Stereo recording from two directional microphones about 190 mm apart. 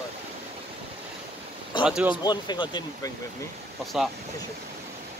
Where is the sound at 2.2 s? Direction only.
25° left (ahead or behind).